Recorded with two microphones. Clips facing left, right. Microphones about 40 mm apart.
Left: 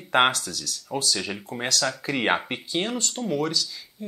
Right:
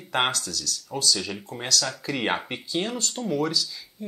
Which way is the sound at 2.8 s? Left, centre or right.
Centre.